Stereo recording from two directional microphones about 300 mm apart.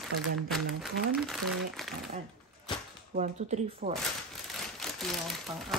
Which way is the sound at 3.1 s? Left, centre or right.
Right.